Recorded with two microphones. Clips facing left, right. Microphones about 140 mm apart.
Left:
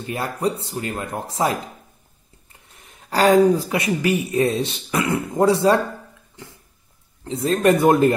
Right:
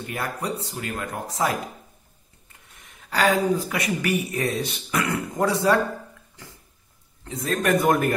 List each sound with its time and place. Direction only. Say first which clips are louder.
0.0 s speech: left 6 dB; 25° left (ahead or behind)
2.8 s speech: left 4 dB; 35° left (ahead or behind)
7.2 s speech: left 6 dB; 30° left (ahead or behind)